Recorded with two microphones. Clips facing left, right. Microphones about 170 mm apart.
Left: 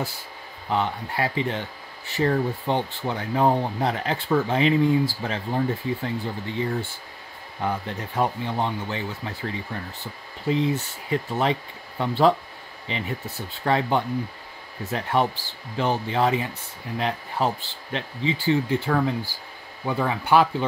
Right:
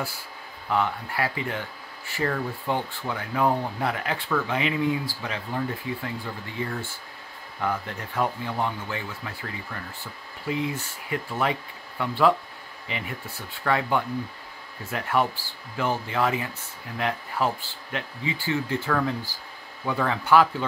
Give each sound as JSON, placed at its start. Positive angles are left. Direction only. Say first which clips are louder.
{"t": 0.7, "sound": "speech", "louder": "even", "side_deg": 25}